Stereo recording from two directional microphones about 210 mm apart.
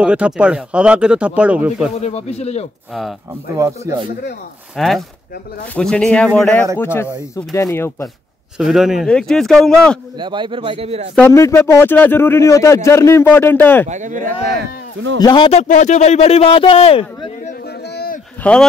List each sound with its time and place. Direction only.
0.0 s speech: 5° right (ahead or behind)
2.0 s speech: 30° left (ahead or behind)
2.9 s speech: centre (ahead or behind)
3.5 s speech: 15° right (ahead or behind)
4.7 s a man's voice: centre (ahead or behind)
8.5 s speech: centre (ahead or behind)
10.1 s a man's voice: 20° right (ahead or behind)
11.1 s a man's voice: 10° left (ahead or behind)
13.8 s speech: 35° right (ahead or behind)
15.1 s a man's voice: 20° left (ahead or behind)
15.6 s a man's voice: 35° left (ahead or behind)
17.8 s a sound: 45° left (ahead or behind)
18.4 s a man's voice: 5° left (ahead or behind)